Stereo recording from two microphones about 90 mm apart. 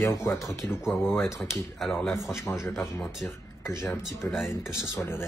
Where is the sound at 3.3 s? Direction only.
30° left (ahead or behind).